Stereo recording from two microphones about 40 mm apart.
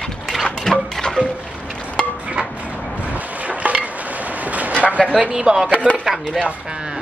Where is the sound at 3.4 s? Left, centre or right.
Right.